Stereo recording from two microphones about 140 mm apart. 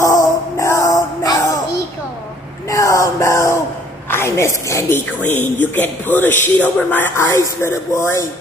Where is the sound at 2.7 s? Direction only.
20° left (ahead or behind).